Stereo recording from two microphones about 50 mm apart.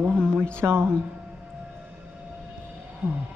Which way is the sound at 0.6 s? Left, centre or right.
Right.